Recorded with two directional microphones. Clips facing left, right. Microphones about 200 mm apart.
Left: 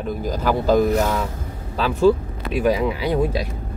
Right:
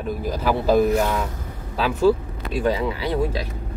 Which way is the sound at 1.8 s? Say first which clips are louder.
Left 2 dB; 5° right (ahead or behind).